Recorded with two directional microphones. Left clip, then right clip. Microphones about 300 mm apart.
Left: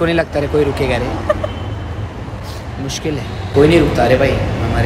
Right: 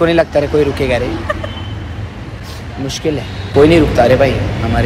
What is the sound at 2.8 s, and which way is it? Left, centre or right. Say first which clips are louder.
Speech: right 4 dB; centre.